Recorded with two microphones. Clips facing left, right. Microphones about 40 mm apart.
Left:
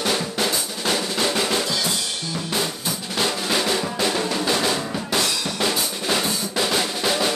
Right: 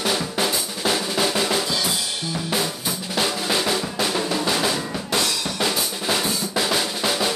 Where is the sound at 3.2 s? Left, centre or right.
Centre.